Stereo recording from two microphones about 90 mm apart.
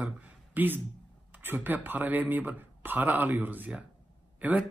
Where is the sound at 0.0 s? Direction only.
15° right (ahead or behind).